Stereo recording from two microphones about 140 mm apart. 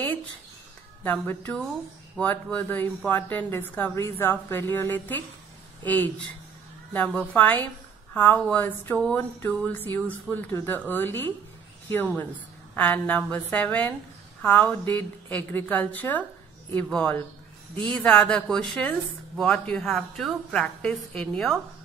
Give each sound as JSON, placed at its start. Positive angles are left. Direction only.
{"t": 1.0, "sound": "a woman's voice", "side_deg": 15}